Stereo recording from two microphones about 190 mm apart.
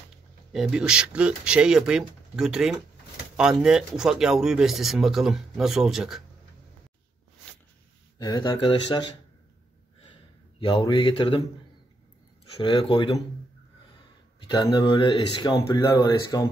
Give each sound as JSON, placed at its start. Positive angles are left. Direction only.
{"t": 0.5, "sound": "speech", "side_deg": -5}
{"t": 8.2, "sound": "speech", "side_deg": 20}
{"t": 10.6, "sound": "speech", "side_deg": 25}
{"t": 12.5, "sound": "speech", "side_deg": 25}
{"t": 14.5, "sound": "speech", "side_deg": 25}